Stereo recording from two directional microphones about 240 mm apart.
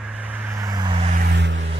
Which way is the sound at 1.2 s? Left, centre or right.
Right.